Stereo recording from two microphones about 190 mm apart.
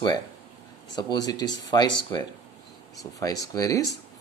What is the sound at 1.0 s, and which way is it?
Speech, 20° left (ahead or behind).